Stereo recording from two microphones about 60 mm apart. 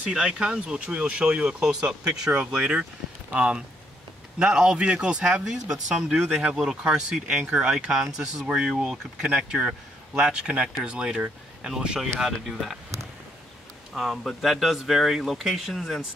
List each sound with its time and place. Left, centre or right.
0.1 s speech: centre
13.9 s speech: centre